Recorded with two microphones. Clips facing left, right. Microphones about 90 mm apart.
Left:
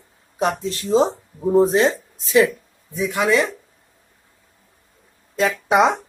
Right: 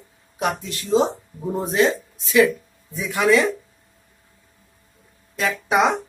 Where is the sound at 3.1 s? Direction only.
15° left (ahead or behind).